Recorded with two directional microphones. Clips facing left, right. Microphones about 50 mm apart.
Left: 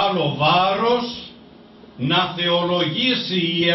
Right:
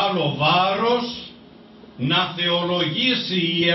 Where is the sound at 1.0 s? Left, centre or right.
Centre.